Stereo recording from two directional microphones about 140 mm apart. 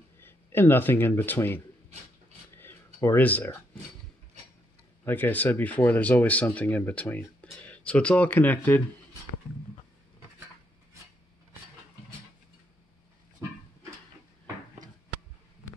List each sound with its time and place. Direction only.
0.2 s speech: 15° left (ahead or behind)
2.5 s a sound: 15° left (ahead or behind)
5.0 s speech: 15° left (ahead or behind)